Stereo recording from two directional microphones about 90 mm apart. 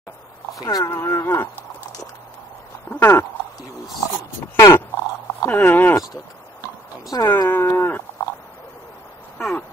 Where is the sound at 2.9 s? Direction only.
25° left (ahead or behind).